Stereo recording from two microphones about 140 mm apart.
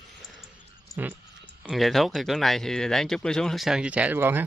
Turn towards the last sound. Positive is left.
turn(degrees=-15)  # may be behind; listen again after turning